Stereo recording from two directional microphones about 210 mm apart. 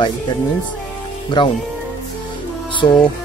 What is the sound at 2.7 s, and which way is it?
Speech, 25° left (ahead or behind).